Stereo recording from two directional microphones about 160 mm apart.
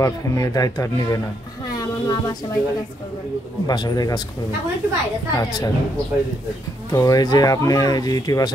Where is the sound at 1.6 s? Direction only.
25° left (ahead or behind).